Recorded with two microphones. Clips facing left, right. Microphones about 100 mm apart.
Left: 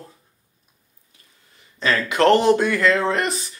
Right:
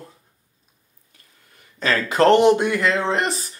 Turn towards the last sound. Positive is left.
turn(degrees=-25)  # may be behind; listen again after turning